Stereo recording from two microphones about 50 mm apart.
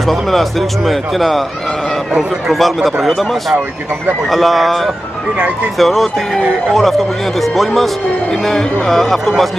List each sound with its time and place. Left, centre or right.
0.0 s speech: centre